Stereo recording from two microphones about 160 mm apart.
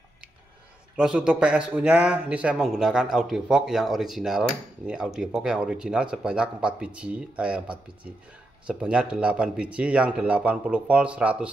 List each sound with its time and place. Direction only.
0.9 s speech: 5° right (ahead or behind)